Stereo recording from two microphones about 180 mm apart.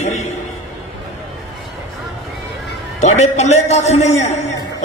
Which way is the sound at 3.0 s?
40° left (ahead or behind).